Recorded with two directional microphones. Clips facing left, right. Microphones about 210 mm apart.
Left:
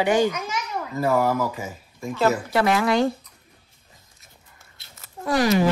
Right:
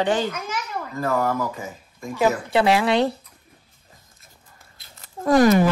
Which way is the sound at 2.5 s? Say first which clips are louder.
Right 3 dB; 30° right (ahead or behind).